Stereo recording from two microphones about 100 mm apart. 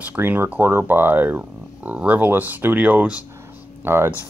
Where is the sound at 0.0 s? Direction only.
15° right (ahead or behind).